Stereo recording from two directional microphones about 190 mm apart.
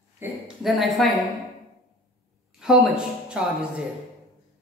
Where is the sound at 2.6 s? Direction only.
Centre (ahead or behind).